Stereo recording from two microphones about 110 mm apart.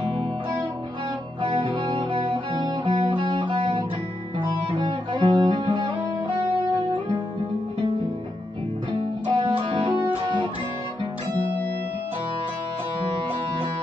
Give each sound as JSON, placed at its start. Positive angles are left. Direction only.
{"t": 1.4, "sound": "music", "side_deg": -50}
{"t": 9.3, "sound": "guitar", "side_deg": -50}